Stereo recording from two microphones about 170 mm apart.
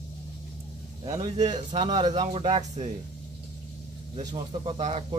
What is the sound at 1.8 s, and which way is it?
Speech, 25° right (ahead or behind).